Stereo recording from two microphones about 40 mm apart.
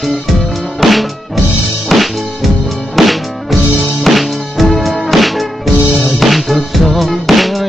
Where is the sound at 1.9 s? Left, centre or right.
Centre.